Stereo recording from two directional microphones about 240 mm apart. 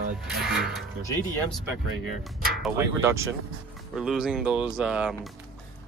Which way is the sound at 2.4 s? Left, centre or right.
Centre.